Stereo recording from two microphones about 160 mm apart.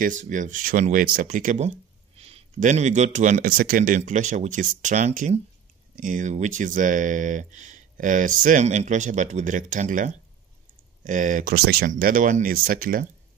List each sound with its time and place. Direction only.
0.0 s speech: 55° right (ahead or behind)
11.5 s speech: 85° right
11.9 s speech: 55° right (ahead or behind)